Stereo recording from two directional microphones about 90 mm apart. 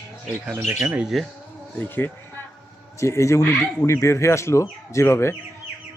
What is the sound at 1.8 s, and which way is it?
Speech, 20° left (ahead or behind).